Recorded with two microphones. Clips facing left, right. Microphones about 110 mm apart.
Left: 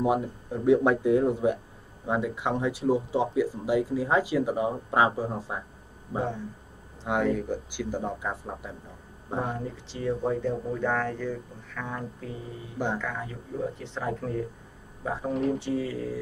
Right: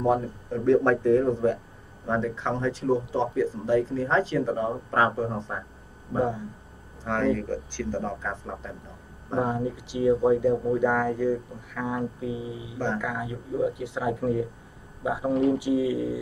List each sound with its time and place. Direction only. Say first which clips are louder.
0.0 s speech: right 2 dB; 10° left (ahead or behind)
7.3 s speech: right 1 dB; 10° left (ahead or behind)
9.4 s speech: right 6 dB; 15° right (ahead or behind)
12.7 s speech: right 1 dB; 10° left (ahead or behind)
13.0 s speech: right 3 dB; 10° right (ahead or behind)